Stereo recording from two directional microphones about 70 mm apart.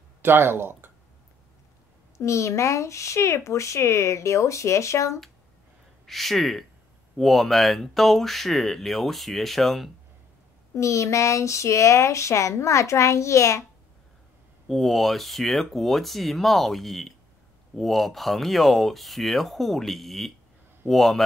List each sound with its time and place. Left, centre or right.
0.2 s speech: right
2.1 s speech: left
6.0 s speech: centre
10.7 s speech: left
14.7 s speech: centre